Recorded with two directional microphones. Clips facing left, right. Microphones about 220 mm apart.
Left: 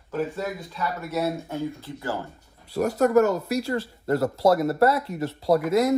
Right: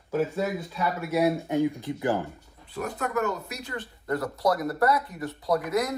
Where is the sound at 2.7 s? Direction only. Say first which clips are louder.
Left 10 dB; 40° left (ahead or behind); by 5.9 s 25° left (ahead or behind).